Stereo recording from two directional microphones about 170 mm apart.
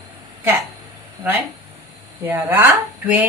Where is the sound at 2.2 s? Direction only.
10° right (ahead or behind).